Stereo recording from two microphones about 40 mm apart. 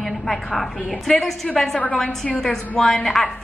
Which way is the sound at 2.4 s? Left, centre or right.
Left.